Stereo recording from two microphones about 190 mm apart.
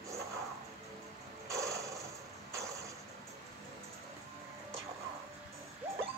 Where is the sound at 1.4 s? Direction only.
15° right (ahead or behind).